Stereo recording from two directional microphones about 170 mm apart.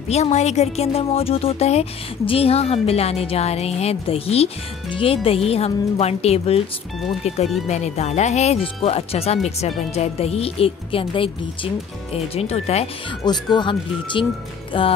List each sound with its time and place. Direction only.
0.1 s speech: 40° left (ahead or behind)
13.2 s speech: 25° left (ahead or behind)
14.7 s music: 30° left (ahead or behind)